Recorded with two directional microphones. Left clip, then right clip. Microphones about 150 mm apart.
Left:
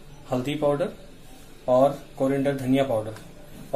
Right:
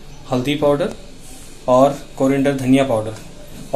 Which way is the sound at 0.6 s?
15° left (ahead or behind).